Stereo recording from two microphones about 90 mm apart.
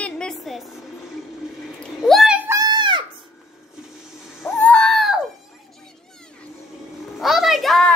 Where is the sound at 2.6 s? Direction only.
55° right (ahead or behind).